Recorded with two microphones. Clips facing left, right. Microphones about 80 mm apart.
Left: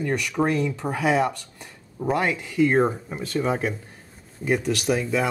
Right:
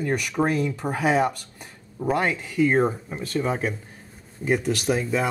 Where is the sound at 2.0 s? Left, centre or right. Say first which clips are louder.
Even; centre.